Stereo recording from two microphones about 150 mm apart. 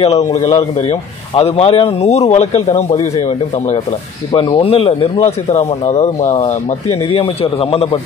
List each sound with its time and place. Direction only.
0.0 s a man's voice: 45° left (ahead or behind)
5.5 s a man's voice: 50° left (ahead or behind)